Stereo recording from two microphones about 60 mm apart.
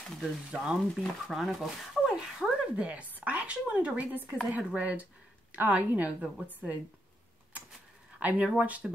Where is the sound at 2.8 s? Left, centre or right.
Right.